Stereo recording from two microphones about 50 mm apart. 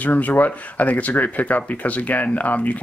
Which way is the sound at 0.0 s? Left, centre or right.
Left.